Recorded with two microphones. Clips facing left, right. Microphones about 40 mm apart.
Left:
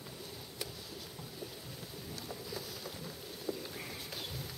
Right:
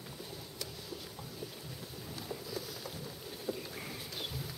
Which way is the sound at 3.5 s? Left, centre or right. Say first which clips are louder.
Right 1 dB; left.